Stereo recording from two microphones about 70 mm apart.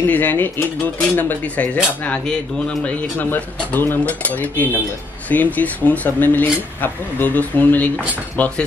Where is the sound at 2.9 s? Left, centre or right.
Left.